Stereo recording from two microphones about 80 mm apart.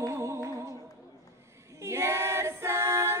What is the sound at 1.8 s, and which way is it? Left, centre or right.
Female singing, right.